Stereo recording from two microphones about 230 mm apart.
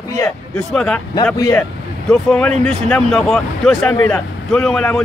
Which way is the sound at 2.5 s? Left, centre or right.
Right.